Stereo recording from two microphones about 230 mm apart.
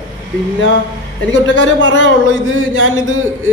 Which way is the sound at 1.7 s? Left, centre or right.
Right.